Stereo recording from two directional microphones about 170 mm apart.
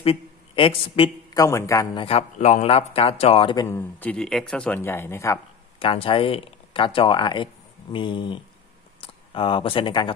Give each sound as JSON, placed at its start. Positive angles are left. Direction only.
{"t": 0.0, "sound": "a man's voice", "side_deg": 30}
{"t": 2.0, "sound": "speech", "side_deg": 40}
{"t": 3.6, "sound": "speech", "side_deg": 10}
{"t": 5.8, "sound": "speech", "side_deg": 30}